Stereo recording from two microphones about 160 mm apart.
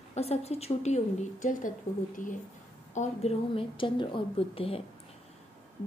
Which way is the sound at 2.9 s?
40° left (ahead or behind).